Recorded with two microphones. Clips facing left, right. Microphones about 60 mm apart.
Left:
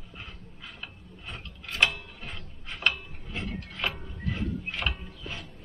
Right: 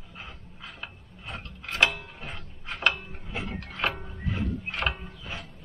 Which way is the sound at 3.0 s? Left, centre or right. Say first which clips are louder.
Right 2 dB; centre.